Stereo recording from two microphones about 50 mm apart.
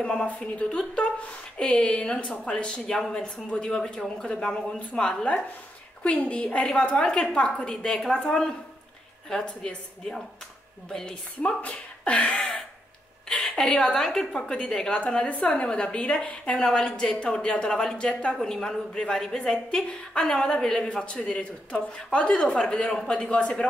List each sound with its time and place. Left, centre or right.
0.0 s a woman's voice: centre
6.0 s a woman's voice: left; by 11.5 s centre
11.6 s a sound: left
13.3 s a woman's voice: centre